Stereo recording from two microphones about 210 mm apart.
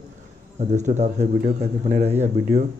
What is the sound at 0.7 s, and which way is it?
Speech, 35° right (ahead or behind).